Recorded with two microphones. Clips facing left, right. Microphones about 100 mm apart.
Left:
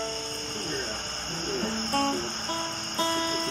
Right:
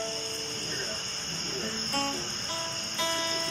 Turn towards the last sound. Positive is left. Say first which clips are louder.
# left 4 dB
turn(degrees=40)  # may be behind; listen again after turning